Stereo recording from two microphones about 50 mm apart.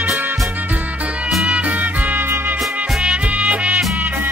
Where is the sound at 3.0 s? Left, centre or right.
Right.